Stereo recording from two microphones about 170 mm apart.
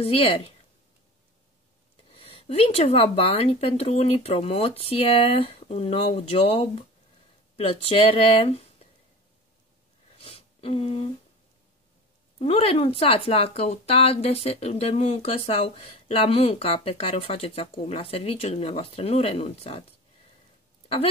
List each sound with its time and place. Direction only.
0.0 s speech: 35° left (ahead or behind)
2.0 s speech: 35° left (ahead or behind)
10.1 s a sound: 35° left (ahead or behind)
12.4 s speech: 35° left (ahead or behind)